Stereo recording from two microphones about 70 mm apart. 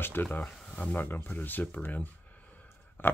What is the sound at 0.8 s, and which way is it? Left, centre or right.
Speech, left.